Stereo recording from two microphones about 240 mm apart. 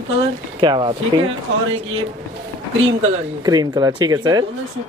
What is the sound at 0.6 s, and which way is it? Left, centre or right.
Speech, centre.